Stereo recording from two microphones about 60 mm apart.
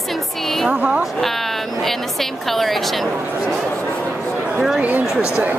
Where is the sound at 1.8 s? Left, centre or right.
Centre.